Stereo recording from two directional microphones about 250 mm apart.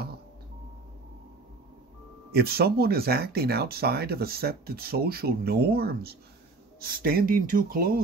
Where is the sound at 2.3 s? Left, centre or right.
Right.